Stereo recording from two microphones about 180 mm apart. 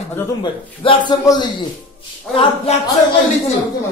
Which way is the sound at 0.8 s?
25° left (ahead or behind).